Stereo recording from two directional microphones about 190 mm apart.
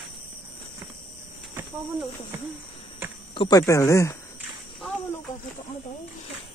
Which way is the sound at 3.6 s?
15° left (ahead or behind).